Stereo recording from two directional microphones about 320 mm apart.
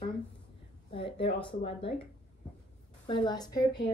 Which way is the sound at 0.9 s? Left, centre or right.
Centre.